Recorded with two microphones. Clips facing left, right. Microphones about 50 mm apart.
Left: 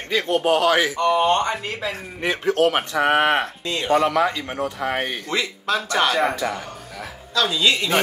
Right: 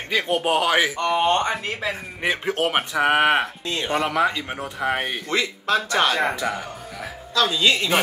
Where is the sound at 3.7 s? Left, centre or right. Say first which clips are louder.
Left 6 dB; right.